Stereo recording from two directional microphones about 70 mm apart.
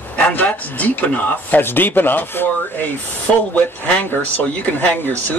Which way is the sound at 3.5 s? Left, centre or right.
Left.